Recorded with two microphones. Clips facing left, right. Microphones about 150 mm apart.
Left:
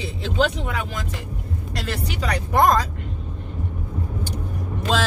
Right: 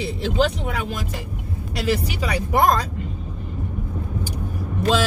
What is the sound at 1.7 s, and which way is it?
Speech, 5° right (ahead or behind).